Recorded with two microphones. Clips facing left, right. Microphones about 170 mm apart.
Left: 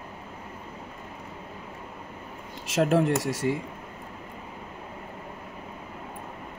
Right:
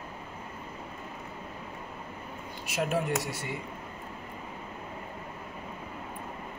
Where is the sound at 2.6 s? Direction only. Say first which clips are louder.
Left 7 dB; 90° left.